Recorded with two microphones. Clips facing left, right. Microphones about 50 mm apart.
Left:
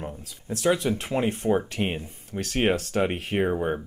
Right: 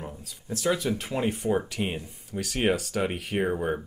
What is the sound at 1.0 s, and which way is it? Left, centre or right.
Speech, centre.